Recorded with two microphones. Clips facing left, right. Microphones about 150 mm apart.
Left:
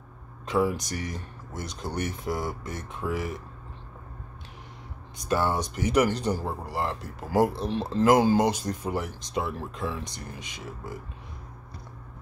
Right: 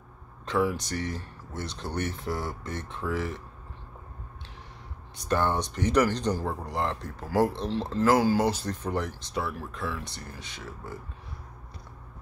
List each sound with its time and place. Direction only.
0.5 s speech: 15° left (ahead or behind)
5.3 s speech: 10° left (ahead or behind)
9.3 s speech: 20° left (ahead or behind)